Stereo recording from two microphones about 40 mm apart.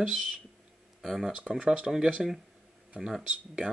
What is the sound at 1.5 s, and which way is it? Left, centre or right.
Speech, centre.